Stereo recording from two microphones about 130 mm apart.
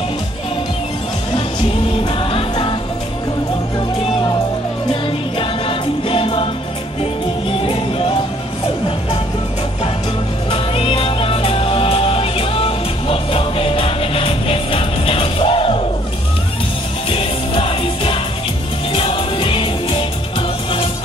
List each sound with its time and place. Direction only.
1.3 s music: 45° left (ahead or behind)
5.4 s music: 45° left (ahead or behind)
10.5 s music: 45° left (ahead or behind)
17.1 s music: 45° left (ahead or behind)